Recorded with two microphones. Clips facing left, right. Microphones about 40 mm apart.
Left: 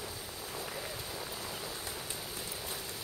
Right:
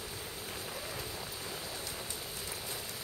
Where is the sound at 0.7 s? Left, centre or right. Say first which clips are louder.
Even; centre.